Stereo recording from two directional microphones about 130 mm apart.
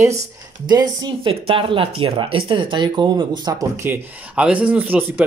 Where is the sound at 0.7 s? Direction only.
35° right (ahead or behind).